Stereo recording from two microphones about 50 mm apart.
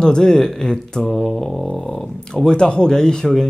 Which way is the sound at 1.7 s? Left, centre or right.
Centre.